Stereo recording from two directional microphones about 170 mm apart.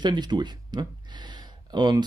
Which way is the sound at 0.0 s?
25° right (ahead or behind).